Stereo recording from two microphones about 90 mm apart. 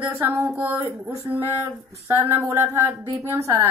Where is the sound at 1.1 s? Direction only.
35° right (ahead or behind).